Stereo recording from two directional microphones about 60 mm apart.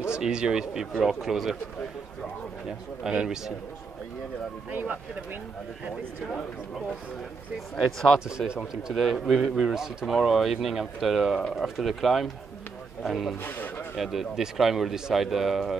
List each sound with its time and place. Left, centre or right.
0.1 s speech: centre
3.0 s speech: centre
4.6 s speech: right
7.5 s speech: centre
8.8 s speech: centre
13.4 s speech: left
13.9 s speech: centre